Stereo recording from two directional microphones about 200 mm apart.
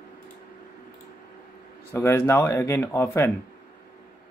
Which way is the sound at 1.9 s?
10° left (ahead or behind).